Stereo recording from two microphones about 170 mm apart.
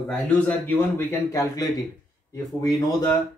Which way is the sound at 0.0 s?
5° left (ahead or behind).